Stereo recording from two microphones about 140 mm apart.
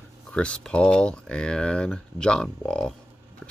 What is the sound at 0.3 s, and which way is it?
Speech, 5° left (ahead or behind).